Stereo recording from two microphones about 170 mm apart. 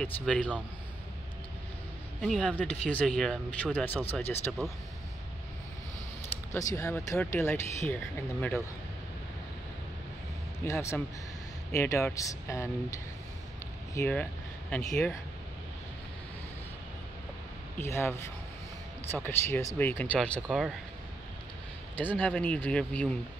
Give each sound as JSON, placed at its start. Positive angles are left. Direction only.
{"t": 0.0, "sound": "speech", "side_deg": 5}
{"t": 2.2, "sound": "speech", "side_deg": 5}
{"t": 6.5, "sound": "speech", "side_deg": 15}
{"t": 10.6, "sound": "speech", "side_deg": 15}
{"t": 13.9, "sound": "vehicle", "side_deg": 10}
{"t": 17.7, "sound": "speech", "side_deg": 15}
{"t": 20.4, "sound": "speech", "side_deg": -5}
{"t": 21.9, "sound": "speech", "side_deg": 10}